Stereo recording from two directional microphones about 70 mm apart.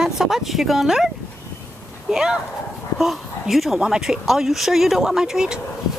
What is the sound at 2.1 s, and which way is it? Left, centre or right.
A woman's voice, centre.